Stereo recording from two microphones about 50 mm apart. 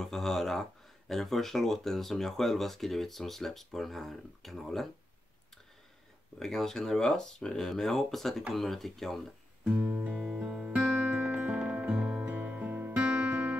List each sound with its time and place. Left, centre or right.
0.0 s speech: centre
6.4 s speech: centre
9.8 s music: right
10.1 s music: centre; by 12.9 s right
13.0 s music: right